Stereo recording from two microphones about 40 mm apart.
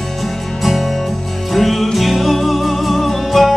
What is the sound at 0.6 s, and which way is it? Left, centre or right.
Music, centre.